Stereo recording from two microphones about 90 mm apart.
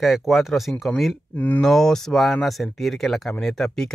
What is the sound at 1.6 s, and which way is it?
Speech, 5° left (ahead or behind).